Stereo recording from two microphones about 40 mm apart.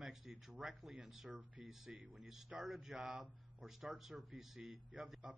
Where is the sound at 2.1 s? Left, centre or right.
Centre.